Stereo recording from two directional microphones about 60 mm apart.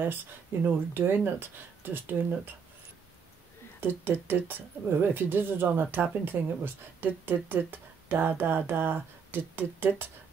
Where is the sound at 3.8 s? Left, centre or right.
Right.